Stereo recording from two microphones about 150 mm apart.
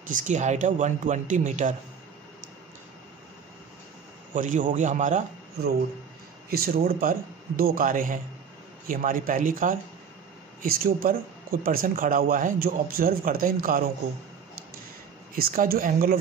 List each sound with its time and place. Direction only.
0.0 s speech: 55° right (ahead or behind)
4.3 s speech: 60° right (ahead or behind)
6.5 s speech: 75° right (ahead or behind)
10.6 s speech: 75° right (ahead or behind)
15.3 s speech: 75° right (ahead or behind)